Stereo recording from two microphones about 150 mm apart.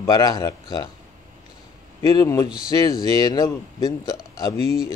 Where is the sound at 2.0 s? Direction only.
20° left (ahead or behind).